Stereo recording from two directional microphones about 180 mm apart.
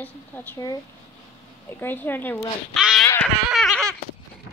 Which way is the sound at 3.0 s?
15° left (ahead or behind).